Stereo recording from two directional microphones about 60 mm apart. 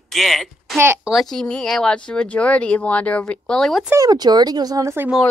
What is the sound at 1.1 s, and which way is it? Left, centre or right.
Speech, centre.